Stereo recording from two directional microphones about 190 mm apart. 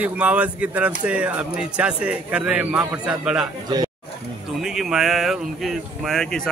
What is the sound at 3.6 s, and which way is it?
Speech, 20° right (ahead or behind).